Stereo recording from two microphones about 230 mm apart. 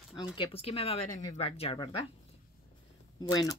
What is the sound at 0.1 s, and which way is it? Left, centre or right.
Speech, left.